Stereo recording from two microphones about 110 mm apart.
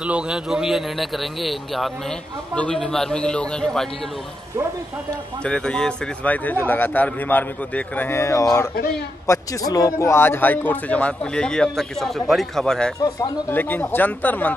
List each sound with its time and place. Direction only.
0.0 s a man's voice: 10° right (ahead or behind)
5.4 s a man's voice: 10° left (ahead or behind)
13.5 s a man's voice: 15° left (ahead or behind)